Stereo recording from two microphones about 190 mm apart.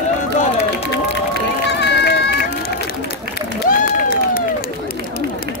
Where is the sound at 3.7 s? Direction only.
50° left (ahead or behind).